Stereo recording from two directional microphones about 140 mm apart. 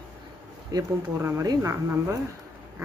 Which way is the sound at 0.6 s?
25° right (ahead or behind).